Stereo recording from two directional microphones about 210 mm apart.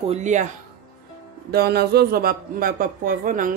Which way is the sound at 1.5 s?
50° right (ahead or behind).